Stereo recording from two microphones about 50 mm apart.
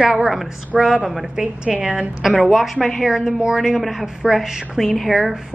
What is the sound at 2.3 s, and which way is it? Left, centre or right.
A woman's voice, centre.